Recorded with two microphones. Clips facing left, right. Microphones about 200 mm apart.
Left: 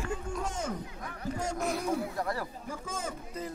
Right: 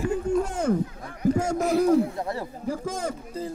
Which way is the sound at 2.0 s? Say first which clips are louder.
Right 7 dB; 25° right (ahead or behind).